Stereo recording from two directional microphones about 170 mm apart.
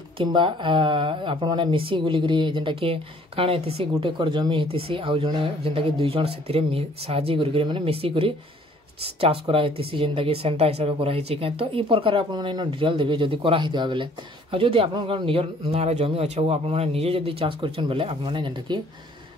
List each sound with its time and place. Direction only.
0.2 s speech: 30° right (ahead or behind)